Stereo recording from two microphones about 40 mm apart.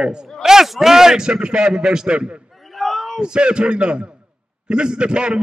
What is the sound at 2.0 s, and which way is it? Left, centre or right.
Speech, right.